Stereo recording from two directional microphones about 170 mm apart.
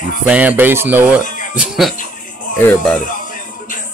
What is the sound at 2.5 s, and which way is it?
Speech, 10° left (ahead or behind).